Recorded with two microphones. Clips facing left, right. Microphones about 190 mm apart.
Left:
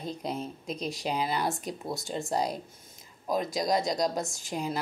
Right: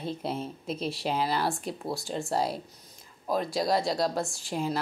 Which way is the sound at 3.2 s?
15° left (ahead or behind).